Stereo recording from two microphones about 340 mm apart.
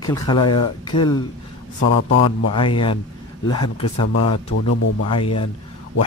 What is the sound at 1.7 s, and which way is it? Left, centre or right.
Speech, left.